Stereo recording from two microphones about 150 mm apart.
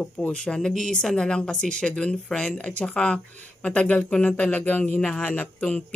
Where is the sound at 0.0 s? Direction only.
10° left (ahead or behind).